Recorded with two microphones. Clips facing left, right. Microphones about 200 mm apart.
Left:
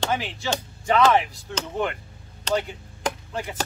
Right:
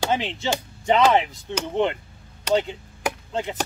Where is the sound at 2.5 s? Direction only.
10° right (ahead or behind).